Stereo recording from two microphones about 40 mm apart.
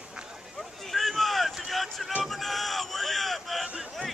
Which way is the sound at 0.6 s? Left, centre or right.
Centre.